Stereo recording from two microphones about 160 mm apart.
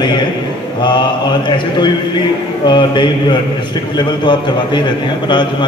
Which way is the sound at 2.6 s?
30° left (ahead or behind).